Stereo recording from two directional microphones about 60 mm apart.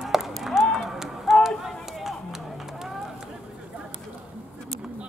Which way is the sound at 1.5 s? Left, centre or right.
Centre.